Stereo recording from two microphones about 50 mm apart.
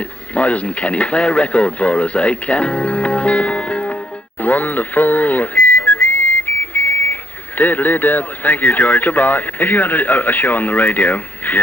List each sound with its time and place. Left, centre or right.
0.3 s speech: left
4.4 s whistling: left
6.7 s speech: left